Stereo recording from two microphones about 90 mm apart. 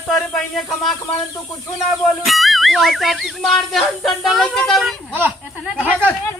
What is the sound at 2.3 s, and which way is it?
Music, centre (ahead or behind).